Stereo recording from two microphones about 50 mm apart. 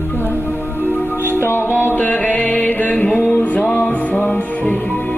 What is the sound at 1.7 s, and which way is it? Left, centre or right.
Music, left.